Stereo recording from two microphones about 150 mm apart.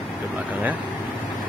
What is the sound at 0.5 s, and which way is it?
Speech, 10° right (ahead or behind).